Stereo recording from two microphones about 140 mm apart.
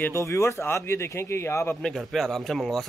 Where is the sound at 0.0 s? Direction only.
20° left (ahead or behind).